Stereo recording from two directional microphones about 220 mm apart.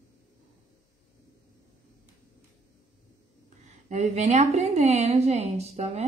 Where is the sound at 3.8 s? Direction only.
30° right (ahead or behind).